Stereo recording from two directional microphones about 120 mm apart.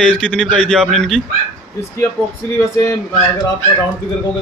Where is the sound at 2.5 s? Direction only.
25° left (ahead or behind).